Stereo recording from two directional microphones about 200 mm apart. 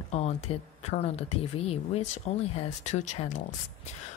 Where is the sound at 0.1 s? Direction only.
30° left (ahead or behind).